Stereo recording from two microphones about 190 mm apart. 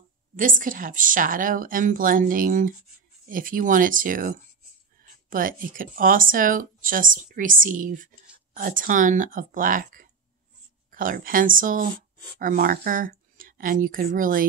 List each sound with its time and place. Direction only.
0.4 s speech: 45° right (ahead or behind)